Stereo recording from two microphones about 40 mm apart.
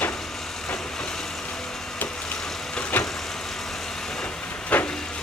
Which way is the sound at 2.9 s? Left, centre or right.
Left.